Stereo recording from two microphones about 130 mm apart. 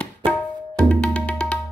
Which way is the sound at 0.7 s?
10° left (ahead or behind).